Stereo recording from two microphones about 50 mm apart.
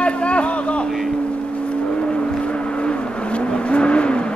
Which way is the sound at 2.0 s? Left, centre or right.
Left.